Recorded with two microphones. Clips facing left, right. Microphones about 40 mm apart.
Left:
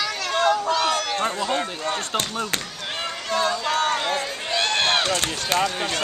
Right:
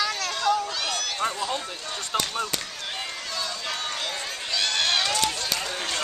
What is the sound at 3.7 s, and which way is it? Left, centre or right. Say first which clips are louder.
Run: left 9 dB; left.